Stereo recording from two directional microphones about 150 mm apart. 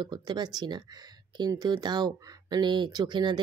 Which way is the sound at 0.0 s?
25° right (ahead or behind).